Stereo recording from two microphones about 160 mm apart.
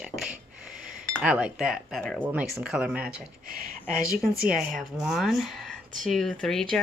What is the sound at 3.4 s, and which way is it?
Speech, 60° right (ahead or behind).